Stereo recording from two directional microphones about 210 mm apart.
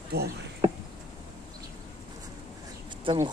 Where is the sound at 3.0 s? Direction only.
20° right (ahead or behind).